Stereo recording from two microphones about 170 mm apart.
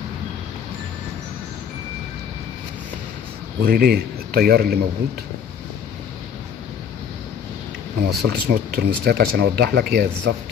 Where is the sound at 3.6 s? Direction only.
65° right (ahead or behind).